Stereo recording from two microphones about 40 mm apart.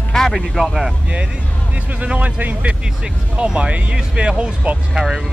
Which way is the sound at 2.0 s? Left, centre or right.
Right.